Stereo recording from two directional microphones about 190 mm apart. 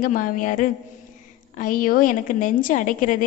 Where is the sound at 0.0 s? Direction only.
45° left (ahead or behind).